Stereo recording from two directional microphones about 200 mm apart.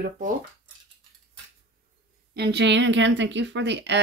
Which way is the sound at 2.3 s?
55° right (ahead or behind).